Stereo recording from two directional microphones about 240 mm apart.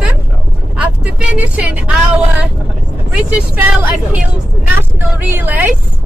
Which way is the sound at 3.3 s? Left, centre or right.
Centre.